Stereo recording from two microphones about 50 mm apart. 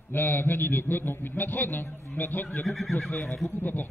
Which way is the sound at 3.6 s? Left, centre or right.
Left.